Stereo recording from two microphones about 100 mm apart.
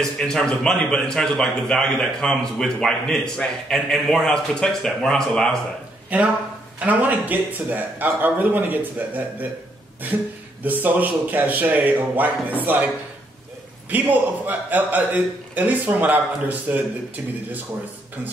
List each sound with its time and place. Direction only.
0.0 s a man's voice: 5° left (ahead or behind)
6.1 s a man's voice: 15° right (ahead or behind)
10.6 s a man's voice: 15° right (ahead or behind)